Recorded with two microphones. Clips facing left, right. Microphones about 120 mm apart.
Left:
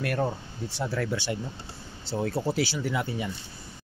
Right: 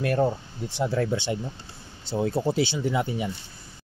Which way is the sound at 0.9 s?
20° right (ahead or behind).